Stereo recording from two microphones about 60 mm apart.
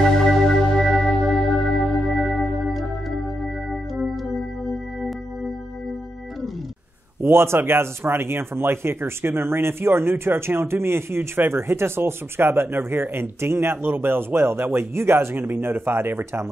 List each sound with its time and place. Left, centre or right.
0.0 s music: centre
1.3 s organ: centre
7.2 s speech: right